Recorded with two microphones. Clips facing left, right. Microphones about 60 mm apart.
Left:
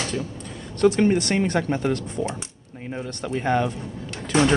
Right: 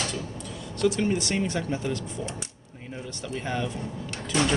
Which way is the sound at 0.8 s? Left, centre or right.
Left.